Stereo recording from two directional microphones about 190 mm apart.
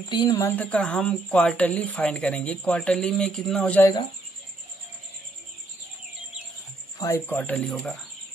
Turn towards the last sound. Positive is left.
turn(degrees=5)  # may be behind; listen again after turning